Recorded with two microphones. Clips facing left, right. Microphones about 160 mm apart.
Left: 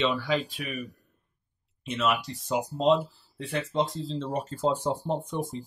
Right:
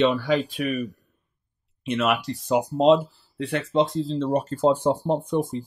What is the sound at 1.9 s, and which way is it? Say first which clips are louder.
Speech: right 4 dB; 65° right (ahead or behind).